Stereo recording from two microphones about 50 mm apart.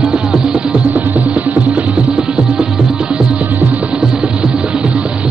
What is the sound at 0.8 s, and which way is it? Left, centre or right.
Music, right.